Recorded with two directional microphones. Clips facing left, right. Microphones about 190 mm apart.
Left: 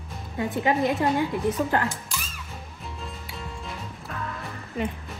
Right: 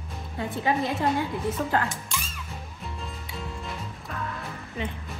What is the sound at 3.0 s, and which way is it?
Music, centre (ahead or behind).